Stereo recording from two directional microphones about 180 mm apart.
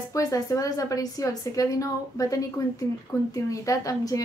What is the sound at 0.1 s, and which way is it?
A woman's voice, 20° left (ahead or behind).